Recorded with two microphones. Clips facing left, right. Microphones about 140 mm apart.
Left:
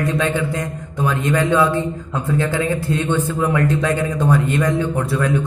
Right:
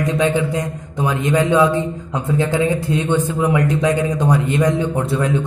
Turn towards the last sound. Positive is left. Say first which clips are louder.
# right 1 dB
turn(degrees=-20)  # may be behind; listen again after turning